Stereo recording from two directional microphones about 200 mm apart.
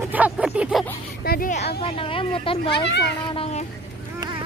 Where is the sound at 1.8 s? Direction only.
25° left (ahead or behind).